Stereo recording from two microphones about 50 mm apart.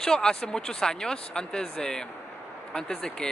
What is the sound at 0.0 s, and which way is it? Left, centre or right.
Speech, centre.